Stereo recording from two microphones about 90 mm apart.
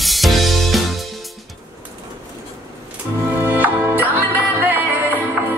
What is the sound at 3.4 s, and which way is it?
Music, 20° right (ahead or behind).